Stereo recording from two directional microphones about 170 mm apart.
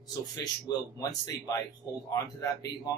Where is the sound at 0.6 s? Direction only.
20° left (ahead or behind).